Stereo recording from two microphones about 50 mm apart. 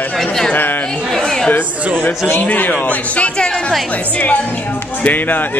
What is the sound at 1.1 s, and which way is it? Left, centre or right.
Speech, centre.